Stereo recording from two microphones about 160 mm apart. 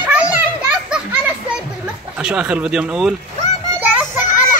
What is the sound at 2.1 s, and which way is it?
Speech, 5° right (ahead or behind).